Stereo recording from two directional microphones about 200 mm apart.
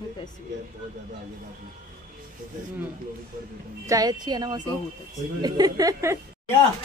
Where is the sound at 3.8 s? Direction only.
15° right (ahead or behind).